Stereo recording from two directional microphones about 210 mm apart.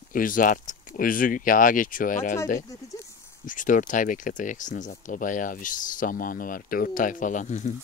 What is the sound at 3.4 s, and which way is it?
Speech, 40° left (ahead or behind).